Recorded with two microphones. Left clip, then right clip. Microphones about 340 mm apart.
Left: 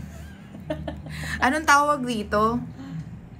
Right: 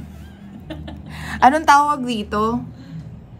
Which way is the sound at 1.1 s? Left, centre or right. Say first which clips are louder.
Right 9 dB; centre.